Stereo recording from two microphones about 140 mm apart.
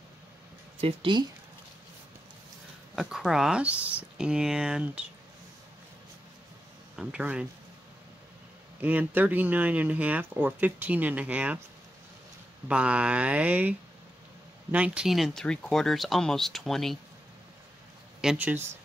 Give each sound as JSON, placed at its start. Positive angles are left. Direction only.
{"t": 0.7, "sound": "speech", "side_deg": -40}
{"t": 3.0, "sound": "speech", "side_deg": 0}
{"t": 7.0, "sound": "speech", "side_deg": -5}
{"t": 8.8, "sound": "speech", "side_deg": -10}
{"t": 12.6, "sound": "speech", "side_deg": -10}
{"t": 18.2, "sound": "speech", "side_deg": -5}